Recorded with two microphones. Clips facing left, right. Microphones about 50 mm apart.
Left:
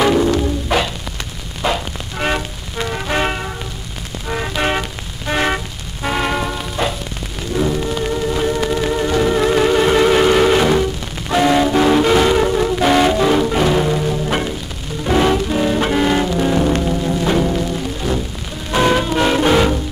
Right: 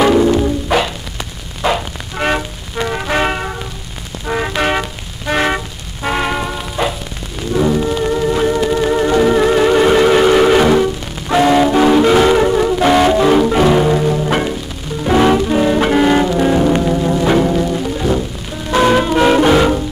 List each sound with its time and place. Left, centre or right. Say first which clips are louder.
0.0 s music: right 3 dB; centre
4.3 s toot: right 3 dB; centre
6.0 s music: right 1 dB; centre
7.5 s music: right 4 dB; centre
8.5 s theremin: right 4 dB; centre
15.0 s music: right 4 dB; centre
18.8 s music: right 3 dB; centre